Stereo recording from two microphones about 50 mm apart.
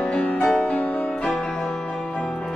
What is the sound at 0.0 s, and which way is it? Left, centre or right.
Music, centre.